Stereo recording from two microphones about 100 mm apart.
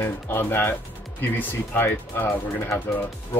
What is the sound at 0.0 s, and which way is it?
Speech, 25° left (ahead or behind).